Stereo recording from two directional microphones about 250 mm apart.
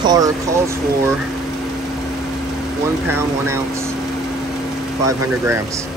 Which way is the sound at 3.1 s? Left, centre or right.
Centre.